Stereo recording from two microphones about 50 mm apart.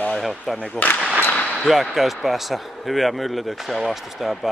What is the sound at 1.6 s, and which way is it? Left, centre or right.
Speech, centre.